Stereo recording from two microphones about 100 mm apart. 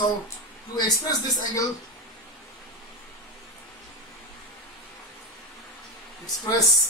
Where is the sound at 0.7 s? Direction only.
40° left (ahead or behind).